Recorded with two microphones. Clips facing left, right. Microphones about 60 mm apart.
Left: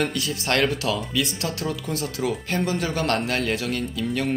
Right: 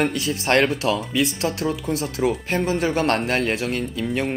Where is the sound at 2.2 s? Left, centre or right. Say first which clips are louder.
Right 4 dB; centre.